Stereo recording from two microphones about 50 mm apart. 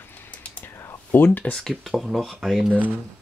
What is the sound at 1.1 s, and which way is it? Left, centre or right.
Speech, left.